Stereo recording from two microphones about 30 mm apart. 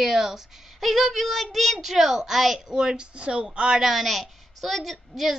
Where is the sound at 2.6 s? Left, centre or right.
Right.